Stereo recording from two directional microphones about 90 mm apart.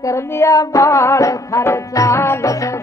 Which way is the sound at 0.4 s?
35° left (ahead or behind).